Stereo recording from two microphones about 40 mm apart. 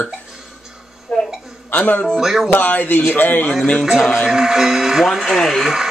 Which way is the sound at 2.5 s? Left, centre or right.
Left.